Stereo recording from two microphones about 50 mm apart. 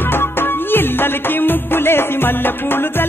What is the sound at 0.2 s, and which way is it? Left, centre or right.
Music, left.